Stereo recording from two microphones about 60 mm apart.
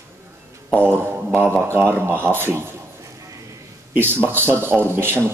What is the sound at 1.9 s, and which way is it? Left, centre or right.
Speech, right.